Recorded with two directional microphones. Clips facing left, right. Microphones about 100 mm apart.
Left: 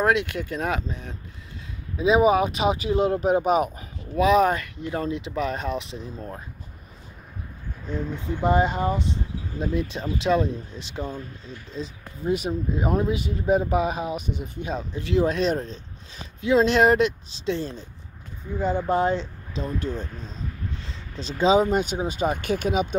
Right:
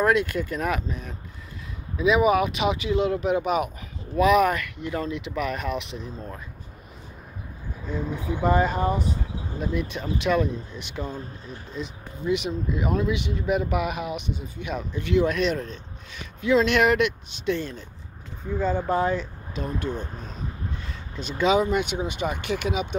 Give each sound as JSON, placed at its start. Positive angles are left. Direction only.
{"t": 0.0, "sound": "speech", "side_deg": 20}
{"t": 2.0, "sound": "speech", "side_deg": 30}
{"t": 7.8, "sound": "speech", "side_deg": -10}
{"t": 8.5, "sound": "speech", "side_deg": 20}
{"t": 14.3, "sound": "speech", "side_deg": 50}
{"t": 14.6, "sound": "speech", "side_deg": 30}
{"t": 18.9, "sound": "speech", "side_deg": 25}
{"t": 20.8, "sound": "speech", "side_deg": 30}